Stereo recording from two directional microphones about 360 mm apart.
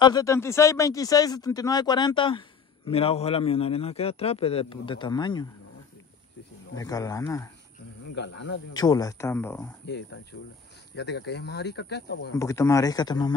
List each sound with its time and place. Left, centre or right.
0.0 s a man's voice: centre
6.7 s a man's voice: centre
8.1 s speech: left
8.7 s a man's voice: centre
9.8 s speech: left
12.4 s a man's voice: centre